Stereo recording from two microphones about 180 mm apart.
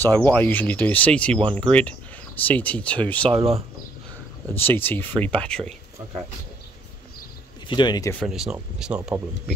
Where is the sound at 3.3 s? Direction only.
35° right (ahead or behind).